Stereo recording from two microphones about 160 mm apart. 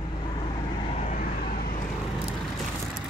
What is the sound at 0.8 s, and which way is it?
Vehicle, 45° left (ahead or behind).